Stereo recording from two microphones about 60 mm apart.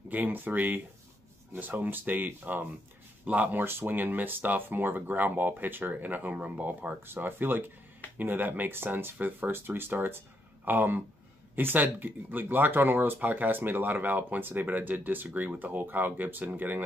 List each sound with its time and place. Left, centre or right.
0.1 s speech: right
3.6 s speech: right